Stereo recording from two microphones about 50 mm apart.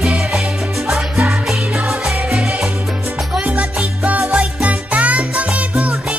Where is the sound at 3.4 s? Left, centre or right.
Right.